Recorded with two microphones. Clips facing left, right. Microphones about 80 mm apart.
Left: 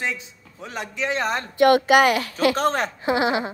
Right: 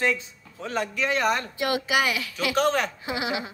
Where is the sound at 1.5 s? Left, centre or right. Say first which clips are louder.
Left 10 dB; left.